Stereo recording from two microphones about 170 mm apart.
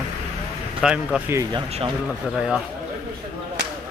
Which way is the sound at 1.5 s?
35° right (ahead or behind).